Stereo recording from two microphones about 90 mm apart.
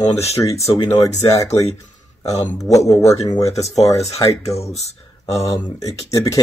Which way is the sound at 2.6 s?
40° left (ahead or behind).